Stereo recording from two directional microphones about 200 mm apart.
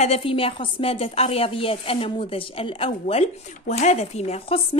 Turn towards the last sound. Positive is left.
turn(degrees=30)  # may be behind; listen again after turning